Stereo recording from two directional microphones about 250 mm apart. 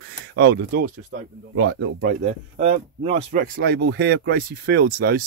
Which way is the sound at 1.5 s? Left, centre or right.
Right.